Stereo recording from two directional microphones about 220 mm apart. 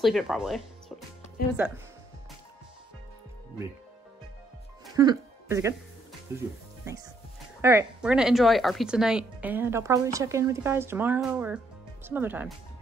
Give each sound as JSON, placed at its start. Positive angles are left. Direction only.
{"t": 0.0, "sound": "speech", "side_deg": 0}
{"t": 1.4, "sound": "speech", "side_deg": 40}
{"t": 4.9, "sound": "speech", "side_deg": -15}
{"t": 7.6, "sound": "speech", "side_deg": -10}